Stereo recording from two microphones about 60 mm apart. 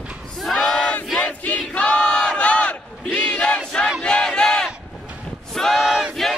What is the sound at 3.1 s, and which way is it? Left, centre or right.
Crowd, centre.